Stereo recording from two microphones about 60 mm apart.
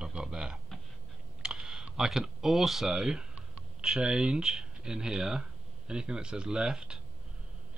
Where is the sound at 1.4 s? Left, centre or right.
Centre.